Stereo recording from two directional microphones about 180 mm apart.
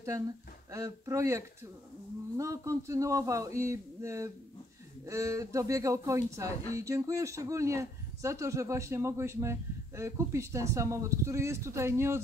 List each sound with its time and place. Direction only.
0.7 s speech: 15° right (ahead or behind)